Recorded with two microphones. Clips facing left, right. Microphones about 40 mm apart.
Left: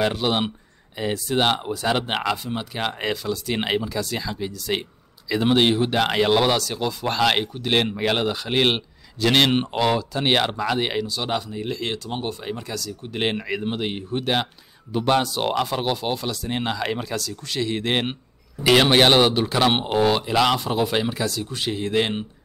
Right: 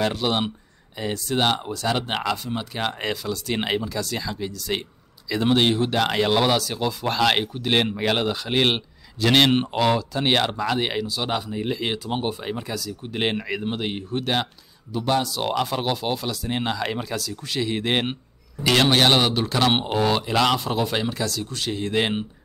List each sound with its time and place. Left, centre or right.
0.0 s speech: centre
14.9 s speech: left
15.5 s speech: centre
18.6 s speech: centre